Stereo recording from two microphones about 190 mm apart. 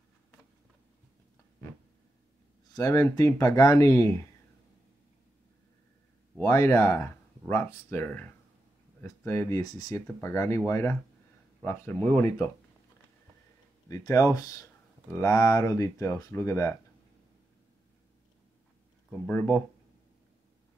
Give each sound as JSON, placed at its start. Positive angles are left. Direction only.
{"t": 2.7, "sound": "speech", "side_deg": 20}
{"t": 6.4, "sound": "speech", "side_deg": 15}
{"t": 13.8, "sound": "speech", "side_deg": 20}
{"t": 19.0, "sound": "speech", "side_deg": 10}